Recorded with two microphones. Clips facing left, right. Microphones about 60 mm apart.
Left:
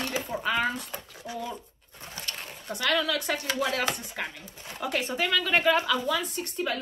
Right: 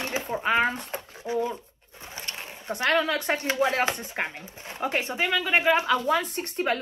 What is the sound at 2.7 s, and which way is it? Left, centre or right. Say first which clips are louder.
A woman's voice: right 3 dB; right.